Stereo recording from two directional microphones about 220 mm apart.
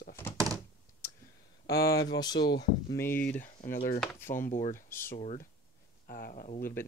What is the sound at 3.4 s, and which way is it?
Speech, 35° left (ahead or behind).